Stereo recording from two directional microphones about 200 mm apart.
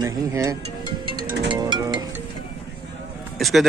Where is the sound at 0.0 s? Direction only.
15° right (ahead or behind).